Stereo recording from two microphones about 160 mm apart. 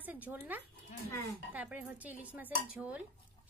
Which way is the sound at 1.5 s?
10° right (ahead or behind).